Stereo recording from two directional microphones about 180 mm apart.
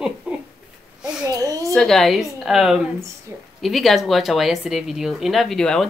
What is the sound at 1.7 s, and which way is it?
Speech, centre (ahead or behind).